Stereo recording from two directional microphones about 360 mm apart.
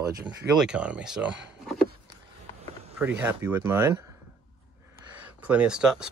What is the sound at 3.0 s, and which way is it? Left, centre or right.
Speech, centre.